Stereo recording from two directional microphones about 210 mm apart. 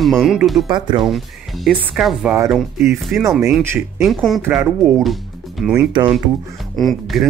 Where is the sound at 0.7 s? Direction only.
20° right (ahead or behind).